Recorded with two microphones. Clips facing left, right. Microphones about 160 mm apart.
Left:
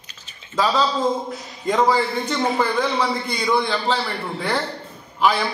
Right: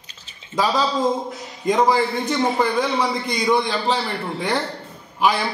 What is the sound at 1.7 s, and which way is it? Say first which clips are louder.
A man's voice: right 1 dB; 15° right (ahead or behind).